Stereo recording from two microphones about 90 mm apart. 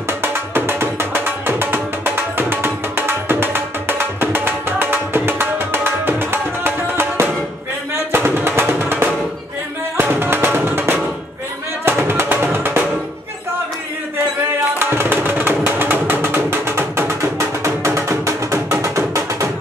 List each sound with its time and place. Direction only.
0.2 s music: 25° right (ahead or behind)
14.8 s music: 25° right (ahead or behind)